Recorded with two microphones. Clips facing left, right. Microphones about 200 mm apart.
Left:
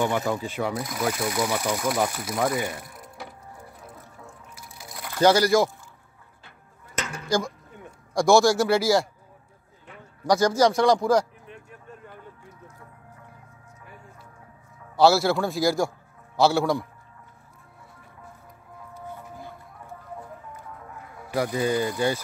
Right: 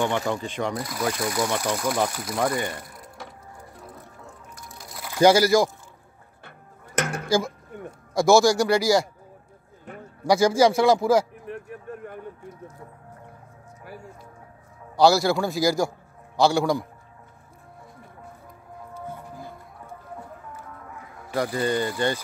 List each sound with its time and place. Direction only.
0.0 s speech: 5° left (ahead or behind)
4.6 s music: centre (ahead or behind)
5.1 s a man's voice: 10° right (ahead or behind)
7.0 s a sound: 50° right (ahead or behind)
7.2 s speech: 5° right (ahead or behind)
7.7 s a sound: 55° right (ahead or behind)
8.1 s speech: centre (ahead or behind)
10.2 s a man's voice: 10° right (ahead or behind)
11.4 s a sound: 60° right (ahead or behind)
15.0 s speech: centre (ahead or behind)
21.5 s speech: 5° left (ahead or behind)